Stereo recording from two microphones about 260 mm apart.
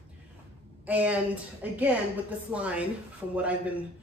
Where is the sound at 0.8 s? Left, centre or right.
Centre.